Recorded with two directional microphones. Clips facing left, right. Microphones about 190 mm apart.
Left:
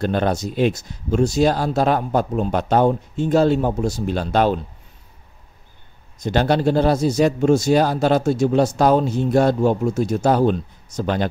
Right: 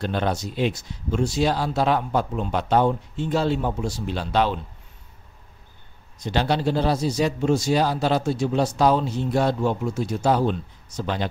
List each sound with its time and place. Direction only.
0.0 s a man's voice: 50° left (ahead or behind)
6.1 s a man's voice: 45° left (ahead or behind)